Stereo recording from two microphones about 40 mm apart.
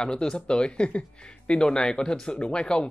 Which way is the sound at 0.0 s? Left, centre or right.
Centre.